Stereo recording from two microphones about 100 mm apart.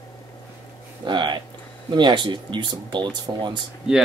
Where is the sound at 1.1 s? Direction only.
45° right (ahead or behind).